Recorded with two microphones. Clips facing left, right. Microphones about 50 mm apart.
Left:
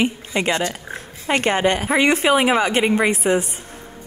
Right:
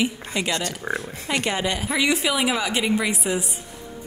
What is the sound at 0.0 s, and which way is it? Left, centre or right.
A woman's voice, left.